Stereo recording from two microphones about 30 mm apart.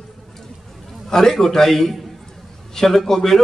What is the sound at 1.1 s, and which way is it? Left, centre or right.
A man's voice, centre.